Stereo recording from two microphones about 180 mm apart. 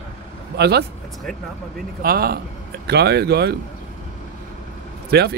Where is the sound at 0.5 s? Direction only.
65° right (ahead or behind).